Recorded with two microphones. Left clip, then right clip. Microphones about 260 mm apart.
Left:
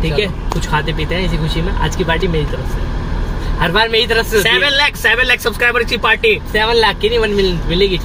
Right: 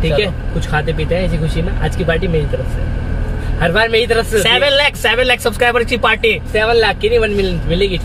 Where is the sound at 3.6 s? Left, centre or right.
Centre.